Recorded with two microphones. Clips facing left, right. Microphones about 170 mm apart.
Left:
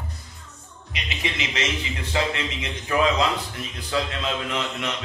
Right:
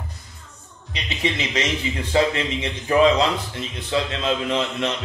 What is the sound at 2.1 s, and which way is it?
A man's voice, 30° right (ahead or behind).